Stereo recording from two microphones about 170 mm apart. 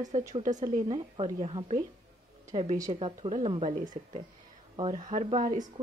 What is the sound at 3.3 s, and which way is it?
Speech, 35° right (ahead or behind).